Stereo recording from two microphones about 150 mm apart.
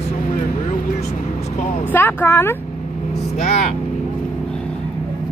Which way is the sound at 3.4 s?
45° left (ahead or behind).